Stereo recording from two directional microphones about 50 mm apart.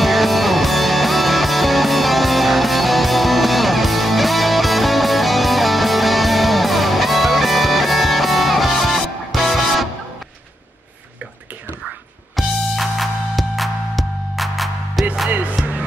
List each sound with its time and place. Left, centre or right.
0.0 s music: centre
12.4 s music: centre
15.3 s music: right